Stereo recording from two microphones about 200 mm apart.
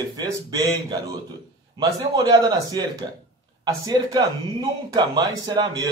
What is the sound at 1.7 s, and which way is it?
A man's voice, 20° right (ahead or behind).